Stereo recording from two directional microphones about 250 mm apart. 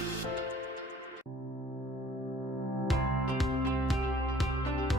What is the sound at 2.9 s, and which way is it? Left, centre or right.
Music, centre.